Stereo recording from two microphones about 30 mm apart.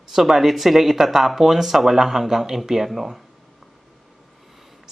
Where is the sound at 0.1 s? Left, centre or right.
Centre.